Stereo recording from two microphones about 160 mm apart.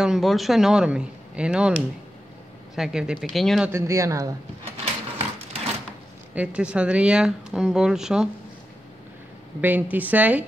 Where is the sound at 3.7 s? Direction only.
15° right (ahead or behind).